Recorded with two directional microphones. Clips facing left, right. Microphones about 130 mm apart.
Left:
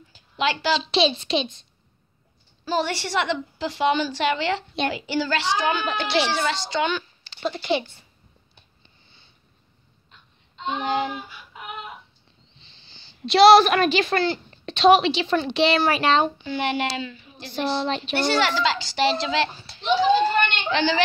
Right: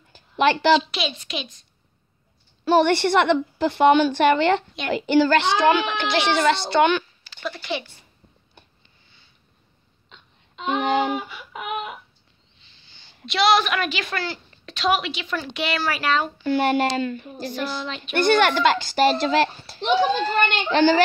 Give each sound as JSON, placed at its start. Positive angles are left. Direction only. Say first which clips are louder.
{"t": 0.1, "sound": "a sound", "louder": "right 5 dB", "side_deg": -55}
{"t": 0.9, "sound": "a woman's voice", "louder": "left 8 dB", "side_deg": 30}
{"t": 2.6, "sound": "a woman's voice", "louder": "right 8 dB", "side_deg": -60}
{"t": 7.2, "sound": "speech", "louder": "left 5 dB", "side_deg": 25}
{"t": 10.0, "sound": "a sound", "louder": "right 5 dB", "side_deg": -90}
{"t": 12.5, "sound": "a woman's voice", "louder": "left 2 dB", "side_deg": 30}
{"t": 16.4, "sound": "a child's voice", "louder": "right 5 dB", "side_deg": -45}
{"t": 17.6, "sound": "speech", "louder": "left 7 dB", "side_deg": 30}
{"t": 18.1, "sound": "a child's voice", "louder": "right 5 dB", "side_deg": -55}